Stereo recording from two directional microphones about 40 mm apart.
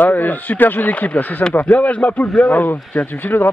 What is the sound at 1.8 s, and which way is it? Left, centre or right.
Speech, left.